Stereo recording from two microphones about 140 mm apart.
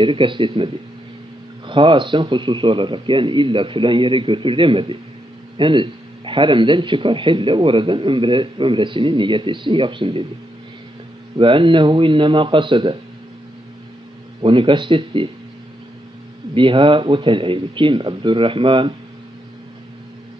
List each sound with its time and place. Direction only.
0.0 s speech: 35° right (ahead or behind)
1.7 s speech: 35° right (ahead or behind)
11.3 s speech: 35° right (ahead or behind)
14.4 s speech: 40° right (ahead or behind)
16.5 s speech: 35° right (ahead or behind)